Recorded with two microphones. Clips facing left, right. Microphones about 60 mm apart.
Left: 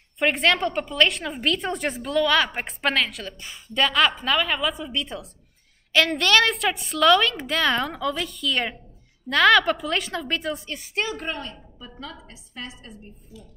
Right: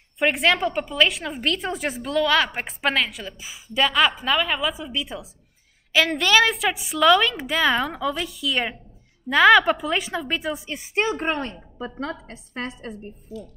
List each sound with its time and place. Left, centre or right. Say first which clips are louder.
0.2 s a woman's voice: right 1 dB; centre
11.1 s a woman's voice: right 6 dB; right